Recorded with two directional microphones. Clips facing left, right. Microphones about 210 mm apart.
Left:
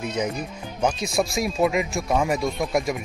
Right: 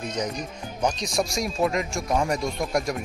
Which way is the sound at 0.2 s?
5° left (ahead or behind).